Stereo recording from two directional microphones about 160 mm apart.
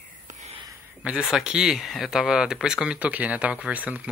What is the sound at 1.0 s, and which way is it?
Speech, 5° right (ahead or behind).